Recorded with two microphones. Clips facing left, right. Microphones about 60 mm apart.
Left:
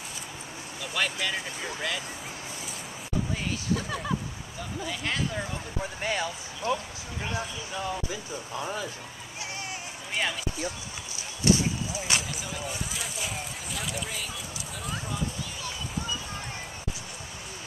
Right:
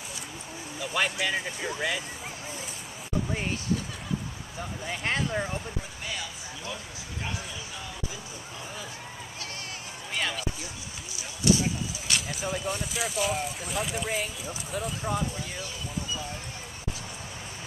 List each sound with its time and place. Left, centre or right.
0.7 s speech: centre
4.8 s speech: right
6.0 s speech: left
10.1 s speech: centre
11.5 s speech: left
12.1 s speech: centre
14.7 s speech: right